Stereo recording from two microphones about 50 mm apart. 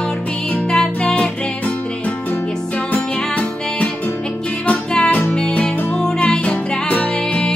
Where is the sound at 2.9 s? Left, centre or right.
Left.